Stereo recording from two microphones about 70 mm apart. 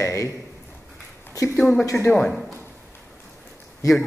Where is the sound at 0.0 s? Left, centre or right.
Left.